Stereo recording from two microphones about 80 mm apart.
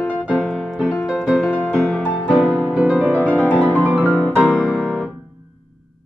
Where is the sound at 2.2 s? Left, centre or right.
Centre.